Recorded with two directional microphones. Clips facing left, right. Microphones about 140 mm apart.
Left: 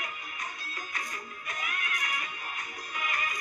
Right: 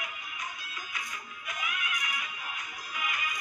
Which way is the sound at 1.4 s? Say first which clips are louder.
Right 1 dB; 40° left (ahead or behind).